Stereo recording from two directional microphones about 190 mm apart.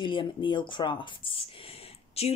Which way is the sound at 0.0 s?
25° left (ahead or behind).